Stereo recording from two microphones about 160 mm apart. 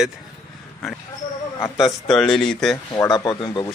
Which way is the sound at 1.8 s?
Centre (ahead or behind).